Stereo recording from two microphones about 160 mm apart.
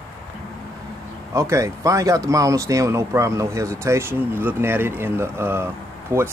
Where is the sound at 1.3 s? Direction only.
20° right (ahead or behind).